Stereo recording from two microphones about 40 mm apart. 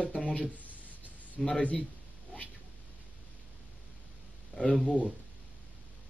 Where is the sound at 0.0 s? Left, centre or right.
Left.